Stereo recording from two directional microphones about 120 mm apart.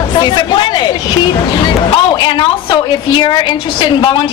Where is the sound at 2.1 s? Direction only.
40° left (ahead or behind).